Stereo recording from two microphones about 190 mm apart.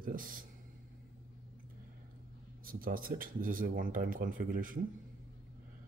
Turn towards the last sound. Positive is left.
turn(degrees=-45)  # may be behind; listen again after turning